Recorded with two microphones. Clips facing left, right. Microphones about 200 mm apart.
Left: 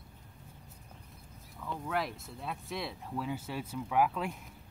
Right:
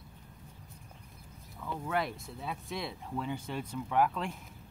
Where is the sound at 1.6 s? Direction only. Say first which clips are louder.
Right 1 dB; centre (ahead or behind).